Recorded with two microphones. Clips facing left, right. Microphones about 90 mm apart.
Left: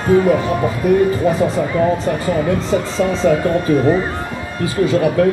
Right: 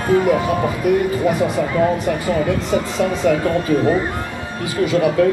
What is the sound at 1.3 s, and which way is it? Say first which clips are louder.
Speech: left 2 dB; 30° left (ahead or behind).